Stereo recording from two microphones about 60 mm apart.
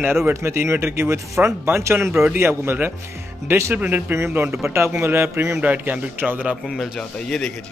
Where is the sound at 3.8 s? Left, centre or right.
Right.